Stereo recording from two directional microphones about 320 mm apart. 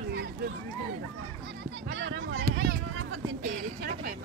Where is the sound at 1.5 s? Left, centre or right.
Right.